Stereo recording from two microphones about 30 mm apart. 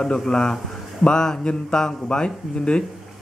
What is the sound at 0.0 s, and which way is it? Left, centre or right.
A man's voice, left.